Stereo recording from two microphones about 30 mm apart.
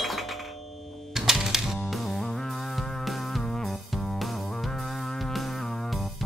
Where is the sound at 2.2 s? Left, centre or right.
Centre.